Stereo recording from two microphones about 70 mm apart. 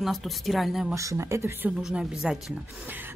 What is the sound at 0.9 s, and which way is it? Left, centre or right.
Speech, right.